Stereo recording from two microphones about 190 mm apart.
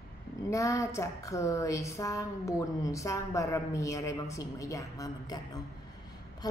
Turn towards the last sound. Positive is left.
turn(degrees=20)  # may be behind; listen again after turning